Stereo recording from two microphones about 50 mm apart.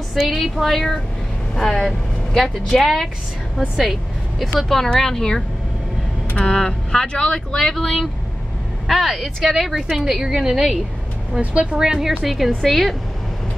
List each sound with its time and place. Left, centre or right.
0.3 s speech: centre
4.8 s speech: centre
7.5 s speech: centre
12.3 s speech: centre